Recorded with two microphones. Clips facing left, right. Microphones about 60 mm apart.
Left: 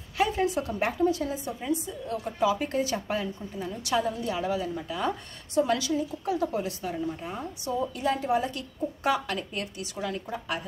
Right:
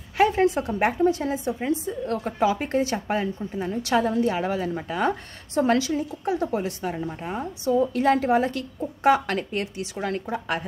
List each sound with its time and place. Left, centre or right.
0.2 s a woman's voice: right
2.0 s a woman's voice: right
2.6 s a woman's voice: right
6.2 s a woman's voice: right
7.9 s a woman's voice: right
8.3 s a woman's voice: right